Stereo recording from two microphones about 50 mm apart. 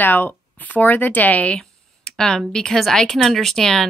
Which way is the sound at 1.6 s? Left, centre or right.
Centre.